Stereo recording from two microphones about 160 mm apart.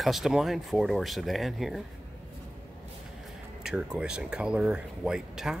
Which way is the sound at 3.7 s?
5° right (ahead or behind).